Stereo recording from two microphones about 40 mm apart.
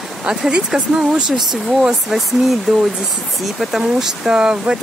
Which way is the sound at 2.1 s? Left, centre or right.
Centre.